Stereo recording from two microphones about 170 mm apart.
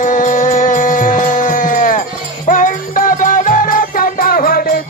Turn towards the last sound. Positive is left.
turn(degrees=60)  # may be behind; listen again after turning